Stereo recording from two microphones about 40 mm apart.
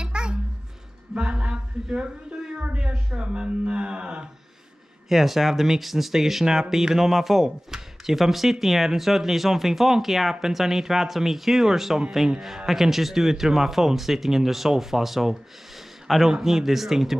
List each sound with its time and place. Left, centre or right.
0.0 s a sound: right
1.9 s a woman's voice: right
3.2 s music: right
5.1 s speech: centre